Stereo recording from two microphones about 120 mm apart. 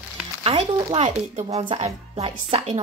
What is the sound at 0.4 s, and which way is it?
A woman's voice, 50° right (ahead or behind).